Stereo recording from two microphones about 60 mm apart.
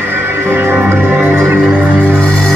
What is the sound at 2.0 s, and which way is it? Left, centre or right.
Music, left.